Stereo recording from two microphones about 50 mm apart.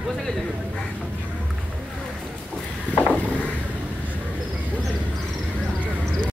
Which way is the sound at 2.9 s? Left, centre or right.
Left.